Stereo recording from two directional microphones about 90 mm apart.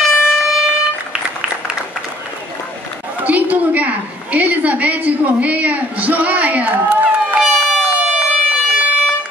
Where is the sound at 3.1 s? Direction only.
20° right (ahead or behind).